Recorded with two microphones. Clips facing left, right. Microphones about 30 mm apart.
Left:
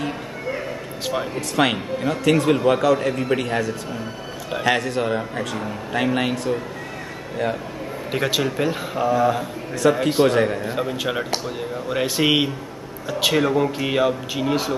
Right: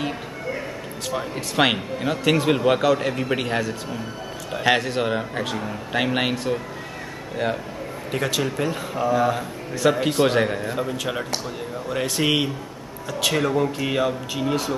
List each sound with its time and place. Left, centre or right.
0.5 s a sound: centre
1.3 s a man's voice: centre
8.1 s a man's voice: centre
10.8 s speech: centre